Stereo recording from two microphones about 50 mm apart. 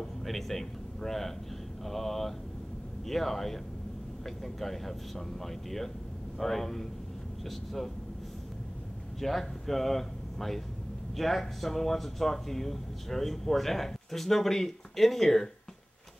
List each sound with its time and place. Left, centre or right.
0.2 s speech: centre
9.2 s speech: centre